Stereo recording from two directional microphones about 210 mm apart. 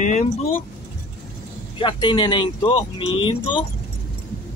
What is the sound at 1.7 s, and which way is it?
Speech, 25° left (ahead or behind).